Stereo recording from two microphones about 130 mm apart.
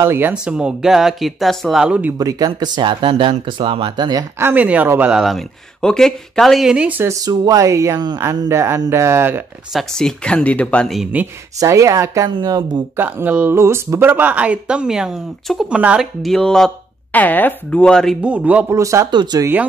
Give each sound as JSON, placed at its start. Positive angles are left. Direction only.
{"t": 0.0, "sound": "speech", "side_deg": -20}
{"t": 0.3, "sound": "speech", "side_deg": -5}
{"t": 2.1, "sound": "speech", "side_deg": -30}
{"t": 5.2, "sound": "speech", "side_deg": 5}
{"t": 7.2, "sound": "speech", "side_deg": -30}
{"t": 9.7, "sound": "speech", "side_deg": 0}
{"t": 11.0, "sound": "speech", "side_deg": -10}
{"t": 11.6, "sound": "speech", "side_deg": -25}
{"t": 12.9, "sound": "speech", "side_deg": -15}
{"t": 18.2, "sound": "speech", "side_deg": -10}
{"t": 18.8, "sound": "speech", "side_deg": -25}
{"t": 19.0, "sound": "speech", "side_deg": -35}